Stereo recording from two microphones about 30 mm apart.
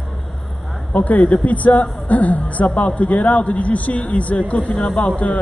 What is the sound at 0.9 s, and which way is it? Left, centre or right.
A woman's voice, left.